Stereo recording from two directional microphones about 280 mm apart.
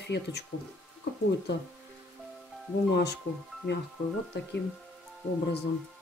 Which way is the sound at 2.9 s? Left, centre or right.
Left.